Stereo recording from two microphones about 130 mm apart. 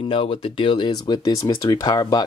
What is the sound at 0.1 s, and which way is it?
Speech, 45° left (ahead or behind).